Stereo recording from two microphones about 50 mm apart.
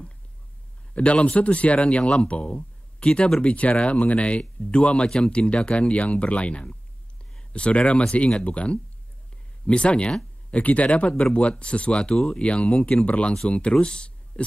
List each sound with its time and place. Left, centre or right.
0.9 s speech: left